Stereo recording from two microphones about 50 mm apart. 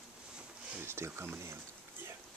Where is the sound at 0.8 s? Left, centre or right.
Right.